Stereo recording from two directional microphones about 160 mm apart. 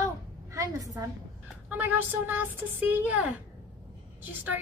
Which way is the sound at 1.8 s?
10° right (ahead or behind).